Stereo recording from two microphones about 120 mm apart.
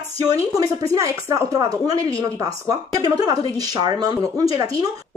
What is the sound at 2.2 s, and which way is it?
Speech, 30° right (ahead or behind).